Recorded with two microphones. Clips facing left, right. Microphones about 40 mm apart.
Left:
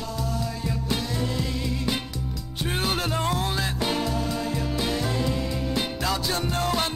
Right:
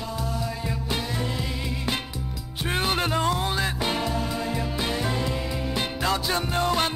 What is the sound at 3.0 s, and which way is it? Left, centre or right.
Music, centre.